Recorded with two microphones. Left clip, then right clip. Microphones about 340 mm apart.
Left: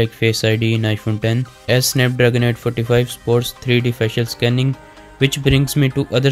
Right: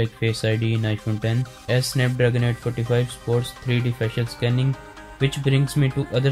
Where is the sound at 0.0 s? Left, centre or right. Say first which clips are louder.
Left 7 dB; left.